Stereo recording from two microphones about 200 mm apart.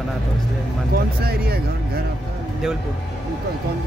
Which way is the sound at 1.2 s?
50° right (ahead or behind).